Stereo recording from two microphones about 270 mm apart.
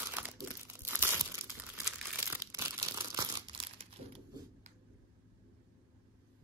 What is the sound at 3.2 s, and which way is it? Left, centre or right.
Crumpling, centre.